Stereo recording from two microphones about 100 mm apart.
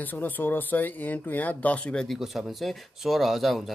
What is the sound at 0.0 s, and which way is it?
Speech, 15° left (ahead or behind).